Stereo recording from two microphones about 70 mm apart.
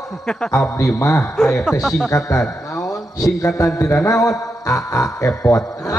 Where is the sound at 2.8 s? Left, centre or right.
Left.